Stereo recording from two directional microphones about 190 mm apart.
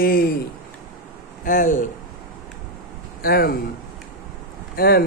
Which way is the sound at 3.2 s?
50° left (ahead or behind).